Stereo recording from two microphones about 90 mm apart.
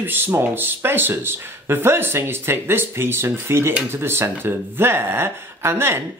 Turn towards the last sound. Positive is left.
turn(degrees=-25)  # may be behind; listen again after turning